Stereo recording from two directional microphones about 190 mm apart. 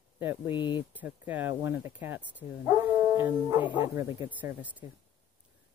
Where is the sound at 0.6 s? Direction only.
25° left (ahead or behind).